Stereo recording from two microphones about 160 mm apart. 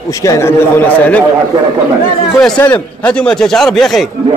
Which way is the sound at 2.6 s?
10° left (ahead or behind).